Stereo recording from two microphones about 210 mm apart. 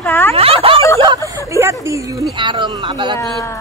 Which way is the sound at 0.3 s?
25° right (ahead or behind).